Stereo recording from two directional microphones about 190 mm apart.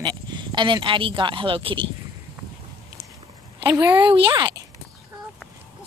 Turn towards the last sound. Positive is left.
turn(degrees=-25)  # may be behind; listen again after turning